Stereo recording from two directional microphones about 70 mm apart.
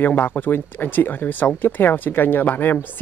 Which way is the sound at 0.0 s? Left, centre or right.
Left.